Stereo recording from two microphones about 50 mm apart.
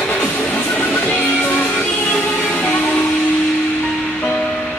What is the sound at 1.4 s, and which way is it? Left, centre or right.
Music, left.